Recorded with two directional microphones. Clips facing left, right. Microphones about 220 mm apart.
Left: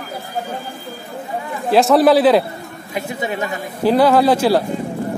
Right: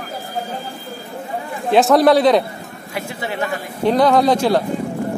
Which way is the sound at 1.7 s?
Centre (ahead or behind).